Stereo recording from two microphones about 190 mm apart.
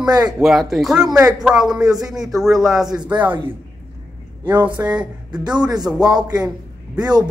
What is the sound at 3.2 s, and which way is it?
A man's voice, 10° right (ahead or behind).